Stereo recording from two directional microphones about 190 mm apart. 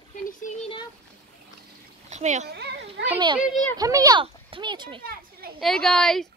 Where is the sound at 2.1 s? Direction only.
40° right (ahead or behind).